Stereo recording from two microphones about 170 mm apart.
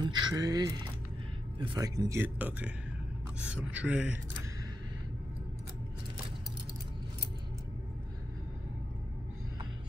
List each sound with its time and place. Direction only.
0.0 s speech: 20° right (ahead or behind)